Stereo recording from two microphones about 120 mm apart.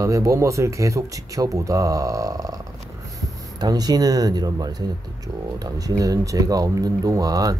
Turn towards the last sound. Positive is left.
turn(degrees=-30)  # may be behind; listen again after turning